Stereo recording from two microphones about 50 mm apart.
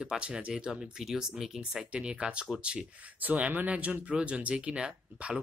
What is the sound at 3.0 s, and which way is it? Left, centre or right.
Speech, right.